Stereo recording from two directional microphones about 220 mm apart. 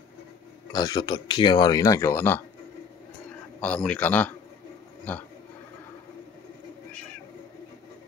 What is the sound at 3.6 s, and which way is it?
Speech, 5° left (ahead or behind).